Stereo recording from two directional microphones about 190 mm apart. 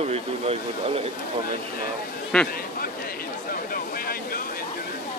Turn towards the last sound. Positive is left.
turn(degrees=50)  # may be behind; listen again after turning